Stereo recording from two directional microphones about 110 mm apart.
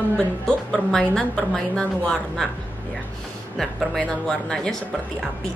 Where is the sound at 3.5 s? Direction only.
5° left (ahead or behind).